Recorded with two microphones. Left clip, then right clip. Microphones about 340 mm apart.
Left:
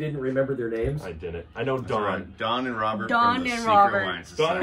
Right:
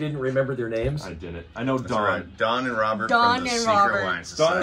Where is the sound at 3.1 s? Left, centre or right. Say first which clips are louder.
Right 1 dB; centre.